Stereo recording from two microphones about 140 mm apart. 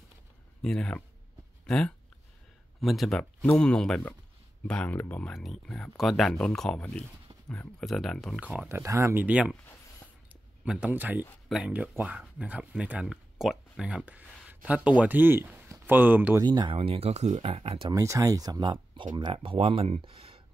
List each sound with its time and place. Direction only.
0.6 s speech: 5° left (ahead or behind)
8.4 s speech: 10° right (ahead or behind)
10.6 s speech: 10° right (ahead or behind)
16.4 s speech: 30° right (ahead or behind)
17.9 s speech: 25° right (ahead or behind); by 20.4 s 45° right (ahead or behind)